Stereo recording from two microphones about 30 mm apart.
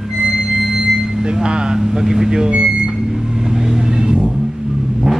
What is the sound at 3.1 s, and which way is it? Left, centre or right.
Vehicle, centre.